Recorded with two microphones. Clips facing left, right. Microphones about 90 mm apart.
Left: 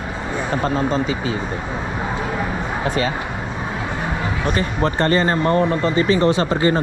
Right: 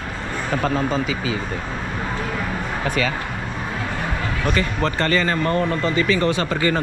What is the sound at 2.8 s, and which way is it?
Speech, 25° left (ahead or behind).